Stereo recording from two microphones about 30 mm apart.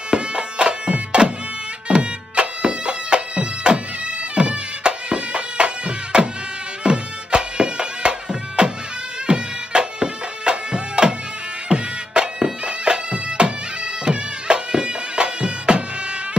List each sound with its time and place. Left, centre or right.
0.1 s music: right
11.7 s bagpipes: right